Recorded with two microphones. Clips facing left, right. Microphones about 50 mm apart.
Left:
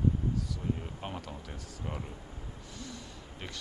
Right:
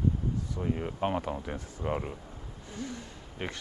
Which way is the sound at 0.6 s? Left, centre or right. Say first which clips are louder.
Right 6 dB; right.